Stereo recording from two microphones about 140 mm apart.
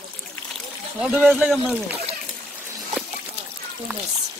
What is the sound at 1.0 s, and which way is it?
Speech, 10° right (ahead or behind).